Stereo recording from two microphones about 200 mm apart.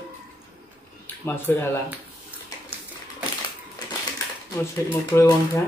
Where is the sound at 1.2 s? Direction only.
10° left (ahead or behind).